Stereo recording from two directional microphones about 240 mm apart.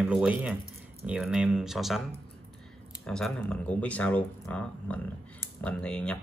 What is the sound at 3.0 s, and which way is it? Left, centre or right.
Speech, centre.